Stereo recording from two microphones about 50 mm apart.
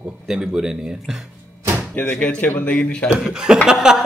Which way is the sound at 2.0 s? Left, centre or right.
Left.